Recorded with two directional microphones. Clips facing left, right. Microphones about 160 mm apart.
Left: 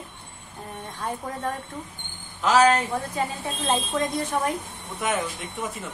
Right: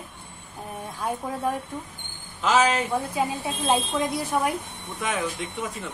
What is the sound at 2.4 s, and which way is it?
A woman's voice, centre (ahead or behind).